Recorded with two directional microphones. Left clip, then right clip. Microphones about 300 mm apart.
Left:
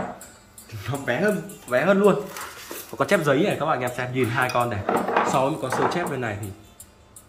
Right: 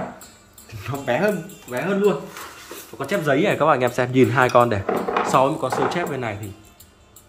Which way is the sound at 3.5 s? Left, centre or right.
Centre.